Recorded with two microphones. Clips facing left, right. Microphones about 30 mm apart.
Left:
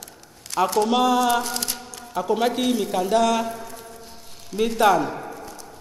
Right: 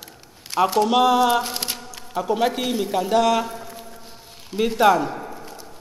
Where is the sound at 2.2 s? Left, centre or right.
Centre; by 4.6 s right.